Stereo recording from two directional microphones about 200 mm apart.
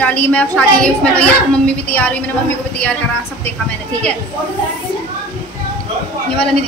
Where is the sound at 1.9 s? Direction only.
10° left (ahead or behind).